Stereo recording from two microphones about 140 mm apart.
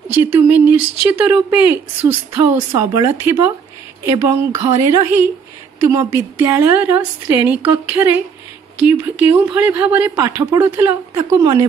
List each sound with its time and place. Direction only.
0.2 s speech: 15° right (ahead or behind)
10.1 s speech: 25° right (ahead or behind)